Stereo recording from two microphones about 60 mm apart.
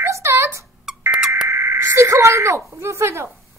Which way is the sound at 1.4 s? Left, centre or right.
Right.